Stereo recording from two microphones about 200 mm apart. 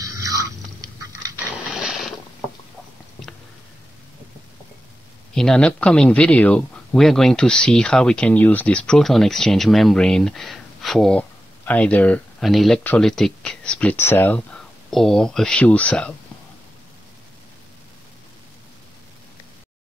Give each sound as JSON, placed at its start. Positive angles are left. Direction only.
{"t": 0.0, "sound": "biting", "side_deg": -15}
{"t": 1.7, "sound": "mechanisms", "side_deg": 0}
{"t": 5.3, "sound": "speech", "side_deg": 0}